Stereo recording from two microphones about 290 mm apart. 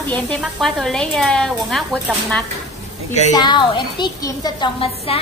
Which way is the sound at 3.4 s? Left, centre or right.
Centre.